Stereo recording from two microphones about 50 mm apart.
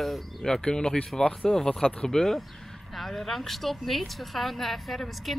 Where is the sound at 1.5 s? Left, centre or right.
Centre.